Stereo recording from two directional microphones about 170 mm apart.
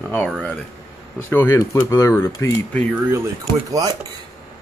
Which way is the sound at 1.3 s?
15° left (ahead or behind).